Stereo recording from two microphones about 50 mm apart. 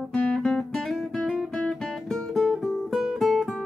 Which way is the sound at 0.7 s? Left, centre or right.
Centre.